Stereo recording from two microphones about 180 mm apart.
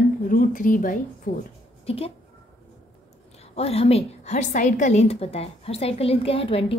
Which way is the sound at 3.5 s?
35° left (ahead or behind).